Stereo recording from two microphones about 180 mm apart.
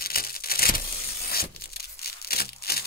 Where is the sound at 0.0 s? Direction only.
55° left (ahead or behind).